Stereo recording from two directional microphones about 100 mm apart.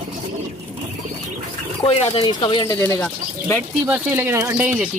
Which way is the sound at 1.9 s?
85° left.